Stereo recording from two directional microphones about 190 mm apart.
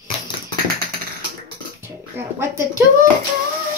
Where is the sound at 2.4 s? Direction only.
15° right (ahead or behind).